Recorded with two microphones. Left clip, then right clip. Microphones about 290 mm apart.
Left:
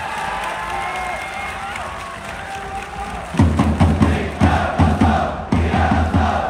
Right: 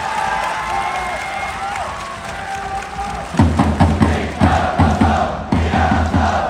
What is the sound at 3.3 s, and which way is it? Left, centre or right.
Music, right.